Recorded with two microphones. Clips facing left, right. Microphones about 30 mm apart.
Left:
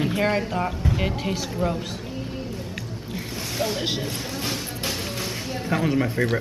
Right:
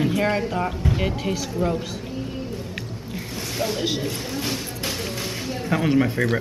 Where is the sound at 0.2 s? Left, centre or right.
Centre.